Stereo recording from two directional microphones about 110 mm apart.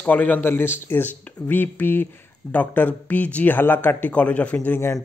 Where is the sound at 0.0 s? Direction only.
15° left (ahead or behind).